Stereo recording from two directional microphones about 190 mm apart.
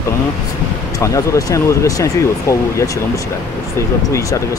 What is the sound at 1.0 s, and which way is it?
Speech, 15° left (ahead or behind).